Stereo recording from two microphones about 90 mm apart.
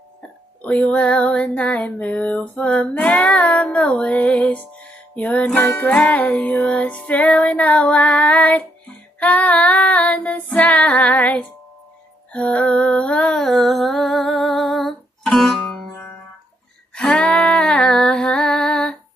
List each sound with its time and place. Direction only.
0.6 s music: 15° left (ahead or behind)
9.2 s female singing: 15° left (ahead or behind)
12.3 s music: 15° left (ahead or behind)
16.9 s music: 5° left (ahead or behind)